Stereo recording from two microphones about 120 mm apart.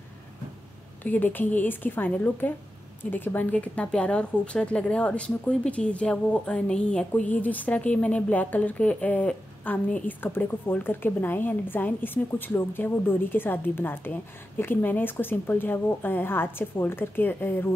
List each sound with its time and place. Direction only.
1.0 s speech: 15° left (ahead or behind)